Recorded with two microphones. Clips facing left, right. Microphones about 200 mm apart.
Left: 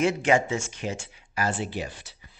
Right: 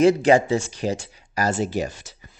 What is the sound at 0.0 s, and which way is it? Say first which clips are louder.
Speech: right 7 dB; 35° right (ahead or behind).